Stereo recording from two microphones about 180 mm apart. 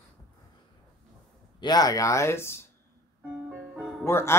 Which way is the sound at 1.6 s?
20° left (ahead or behind).